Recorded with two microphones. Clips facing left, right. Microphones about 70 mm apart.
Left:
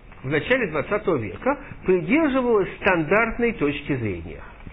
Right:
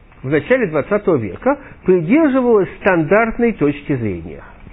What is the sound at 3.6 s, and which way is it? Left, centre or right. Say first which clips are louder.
Speech: right 7 dB; right.